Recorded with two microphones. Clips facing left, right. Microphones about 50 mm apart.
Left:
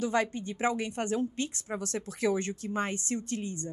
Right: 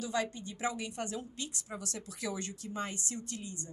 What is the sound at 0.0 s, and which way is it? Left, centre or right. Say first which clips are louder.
A woman's voice: left 6 dB; left.